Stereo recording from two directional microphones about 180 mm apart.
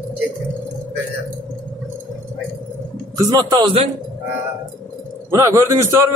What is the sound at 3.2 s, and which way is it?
Speech, 20° right (ahead or behind).